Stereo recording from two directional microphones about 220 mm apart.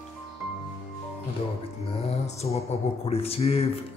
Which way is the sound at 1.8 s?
30° left (ahead or behind).